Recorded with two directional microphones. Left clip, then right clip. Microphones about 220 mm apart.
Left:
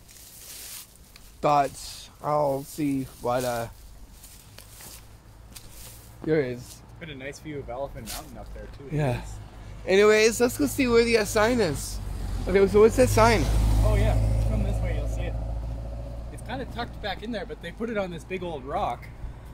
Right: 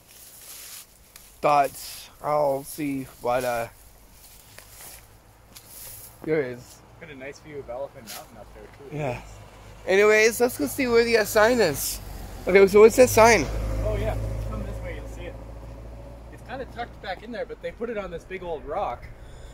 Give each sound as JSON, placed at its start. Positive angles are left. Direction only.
{"t": 1.4, "sound": "speech", "side_deg": -15}
{"t": 6.2, "sound": "speech", "side_deg": -5}
{"t": 7.0, "sound": "speech", "side_deg": 55}
{"t": 8.9, "sound": "speech", "side_deg": 25}
{"t": 9.8, "sound": "speech", "side_deg": 0}
{"t": 11.8, "sound": "vehicle", "side_deg": -45}
{"t": 12.4, "sound": "speech", "side_deg": -40}
{"t": 13.7, "sound": "vehicle", "side_deg": 50}
{"t": 16.3, "sound": "speech", "side_deg": 45}